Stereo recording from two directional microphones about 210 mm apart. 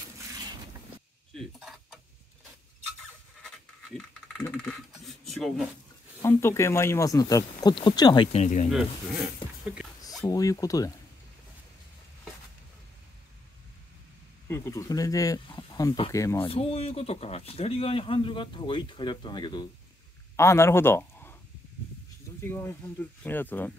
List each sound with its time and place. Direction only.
1.3 s a sound: centre (ahead or behind)
4.4 s a sound: 5° left (ahead or behind)
6.2 s speech: 10° left (ahead or behind)
8.3 s speech: 35° left (ahead or behind)
8.6 s speech: centre (ahead or behind)
10.2 s speech: 15° left (ahead or behind)
14.5 s speech: 15° left (ahead or behind)
16.3 s speech: 25° left (ahead or behind); by 21.4 s 10° left (ahead or behind)
22.4 s speech: 10° left (ahead or behind)